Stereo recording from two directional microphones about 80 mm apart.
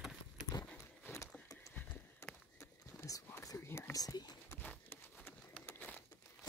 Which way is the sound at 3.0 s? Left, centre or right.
Left.